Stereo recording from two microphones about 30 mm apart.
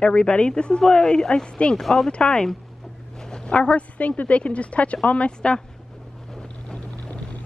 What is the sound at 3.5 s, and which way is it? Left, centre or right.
Speech, left.